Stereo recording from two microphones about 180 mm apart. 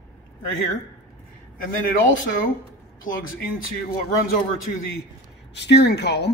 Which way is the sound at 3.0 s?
50° left (ahead or behind).